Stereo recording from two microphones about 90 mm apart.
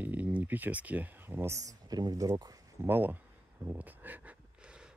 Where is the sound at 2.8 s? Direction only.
20° right (ahead or behind).